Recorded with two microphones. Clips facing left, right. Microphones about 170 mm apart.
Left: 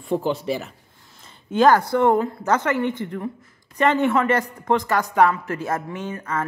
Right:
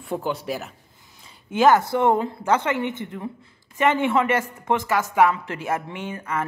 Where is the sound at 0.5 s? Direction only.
Centre (ahead or behind).